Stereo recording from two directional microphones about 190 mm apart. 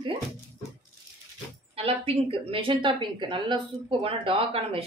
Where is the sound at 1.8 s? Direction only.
30° right (ahead or behind).